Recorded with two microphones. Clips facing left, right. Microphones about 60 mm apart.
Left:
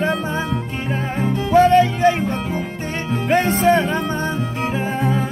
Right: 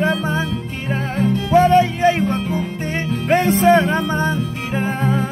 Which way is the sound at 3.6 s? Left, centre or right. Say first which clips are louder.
Right 2 dB; right.